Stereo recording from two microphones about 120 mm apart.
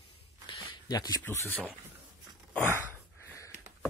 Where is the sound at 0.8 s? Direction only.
35° left (ahead or behind).